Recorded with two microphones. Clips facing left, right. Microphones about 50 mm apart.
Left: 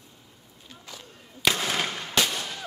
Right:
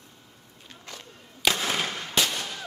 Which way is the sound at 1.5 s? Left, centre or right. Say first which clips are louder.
Even; centre.